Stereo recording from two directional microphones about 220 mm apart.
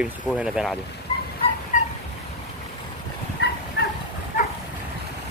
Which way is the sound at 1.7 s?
35° left (ahead or behind).